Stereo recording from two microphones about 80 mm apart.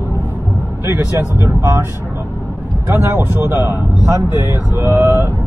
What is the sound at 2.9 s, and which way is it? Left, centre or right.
Speech, right.